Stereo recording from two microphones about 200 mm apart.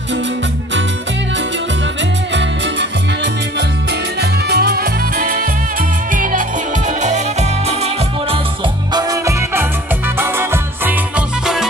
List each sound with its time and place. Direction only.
2.3 s music: 60° right (ahead or behind)
4.2 s music: 55° right (ahead or behind); by 8.4 s 30° right (ahead or behind)
8.9 s music: 20° right (ahead or behind)